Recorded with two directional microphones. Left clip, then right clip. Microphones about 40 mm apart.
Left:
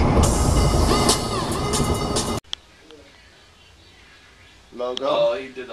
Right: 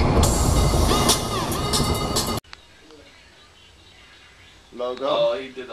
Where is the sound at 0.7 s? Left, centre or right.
Right.